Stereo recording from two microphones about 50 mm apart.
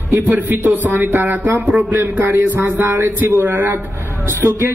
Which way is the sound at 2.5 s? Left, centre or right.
Right.